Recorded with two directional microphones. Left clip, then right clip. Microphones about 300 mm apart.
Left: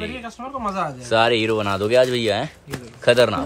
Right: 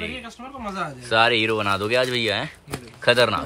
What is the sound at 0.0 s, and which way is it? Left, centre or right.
Speech, centre.